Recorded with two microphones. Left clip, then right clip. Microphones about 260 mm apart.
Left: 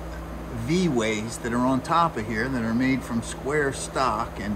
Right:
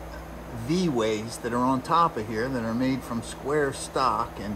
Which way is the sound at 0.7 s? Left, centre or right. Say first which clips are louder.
Left 1 dB; centre.